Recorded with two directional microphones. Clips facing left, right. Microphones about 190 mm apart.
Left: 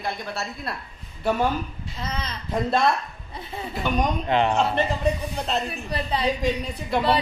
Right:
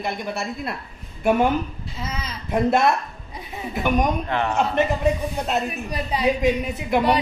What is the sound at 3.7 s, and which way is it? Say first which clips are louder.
Speech: right 4 dB; 15° right (ahead or behind).